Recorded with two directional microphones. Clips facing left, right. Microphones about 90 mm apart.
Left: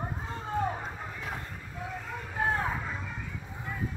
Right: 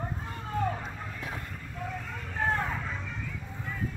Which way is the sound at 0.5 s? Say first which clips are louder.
Even; 20° left (ahead or behind).